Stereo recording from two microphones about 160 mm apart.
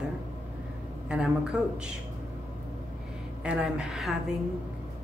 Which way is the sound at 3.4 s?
5° right (ahead or behind).